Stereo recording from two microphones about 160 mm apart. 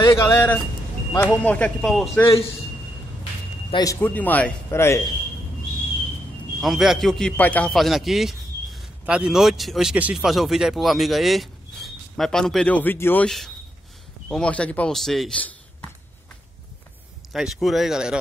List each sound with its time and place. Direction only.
0.0 s speech: 20° left (ahead or behind)
3.7 s speech: 20° left (ahead or behind)
6.6 s a man's voice: centre (ahead or behind)
14.3 s speech: 5° left (ahead or behind)
17.3 s speech: centre (ahead or behind)